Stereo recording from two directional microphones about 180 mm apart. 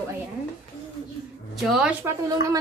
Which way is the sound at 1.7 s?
5° right (ahead or behind).